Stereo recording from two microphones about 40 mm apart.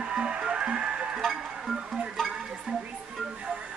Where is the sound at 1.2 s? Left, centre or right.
Centre.